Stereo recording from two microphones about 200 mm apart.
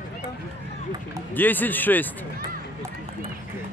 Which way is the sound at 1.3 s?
10° left (ahead or behind).